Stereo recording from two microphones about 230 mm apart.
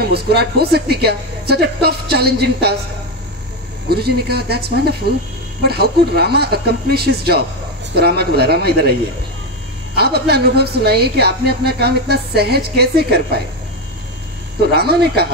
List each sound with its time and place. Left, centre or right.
0.0 s a woman's voice: right
3.9 s a woman's voice: right
9.9 s a woman's voice: right
14.6 s a woman's voice: right